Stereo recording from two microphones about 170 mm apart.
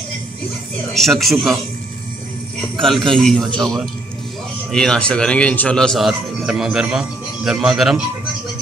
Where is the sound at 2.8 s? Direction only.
Centre (ahead or behind).